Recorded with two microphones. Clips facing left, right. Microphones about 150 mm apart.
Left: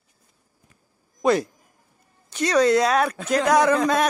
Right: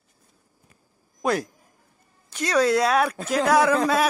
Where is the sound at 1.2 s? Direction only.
5° right (ahead or behind).